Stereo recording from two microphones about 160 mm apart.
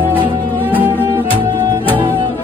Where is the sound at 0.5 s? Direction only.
10° left (ahead or behind).